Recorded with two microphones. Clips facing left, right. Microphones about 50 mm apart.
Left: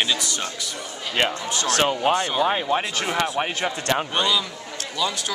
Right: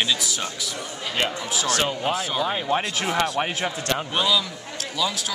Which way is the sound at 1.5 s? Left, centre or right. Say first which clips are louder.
Left 2 dB; centre.